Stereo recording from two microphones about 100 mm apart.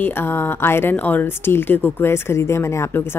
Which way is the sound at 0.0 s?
20° left (ahead or behind).